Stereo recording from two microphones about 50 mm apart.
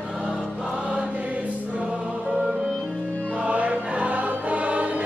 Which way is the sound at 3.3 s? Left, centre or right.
Right.